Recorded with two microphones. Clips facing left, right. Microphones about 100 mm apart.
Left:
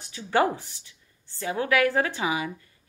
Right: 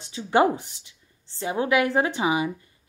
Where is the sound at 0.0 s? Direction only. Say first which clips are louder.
Right 3 dB; 20° right (ahead or behind).